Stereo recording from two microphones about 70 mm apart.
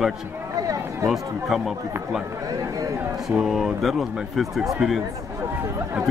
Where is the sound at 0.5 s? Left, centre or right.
Right.